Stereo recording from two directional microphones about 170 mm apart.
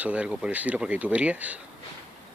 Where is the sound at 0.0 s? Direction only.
5° right (ahead or behind).